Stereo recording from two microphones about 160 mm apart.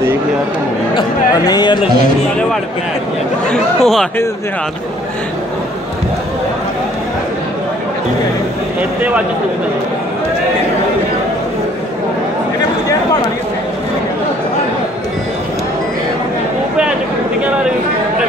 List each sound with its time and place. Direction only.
1.5 s speech: 30° left (ahead or behind)
3.4 s speech: 5° left (ahead or behind)